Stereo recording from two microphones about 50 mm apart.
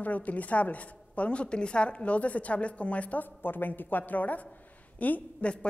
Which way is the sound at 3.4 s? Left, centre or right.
Left.